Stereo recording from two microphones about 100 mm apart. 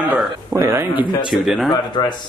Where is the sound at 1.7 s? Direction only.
45° left (ahead or behind).